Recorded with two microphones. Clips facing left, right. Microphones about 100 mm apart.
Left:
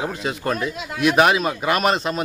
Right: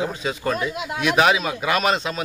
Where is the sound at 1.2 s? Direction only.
Centre (ahead or behind).